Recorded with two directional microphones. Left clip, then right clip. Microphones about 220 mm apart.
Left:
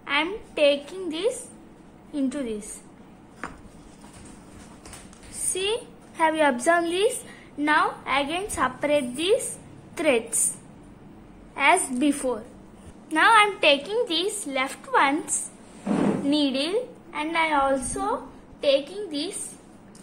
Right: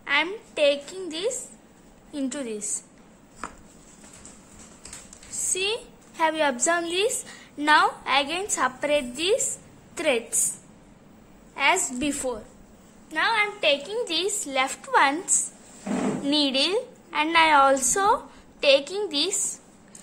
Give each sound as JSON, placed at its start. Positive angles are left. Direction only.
{"t": 0.0, "sound": "a woman's voice", "side_deg": -10}
{"t": 5.5, "sound": "a woman's voice", "side_deg": -10}
{"t": 11.5, "sound": "a woman's voice", "side_deg": -5}
{"t": 13.1, "sound": "a woman's voice", "side_deg": 10}
{"t": 13.8, "sound": "a woman's voice", "side_deg": -10}
{"t": 16.3, "sound": "a woman's voice", "side_deg": -15}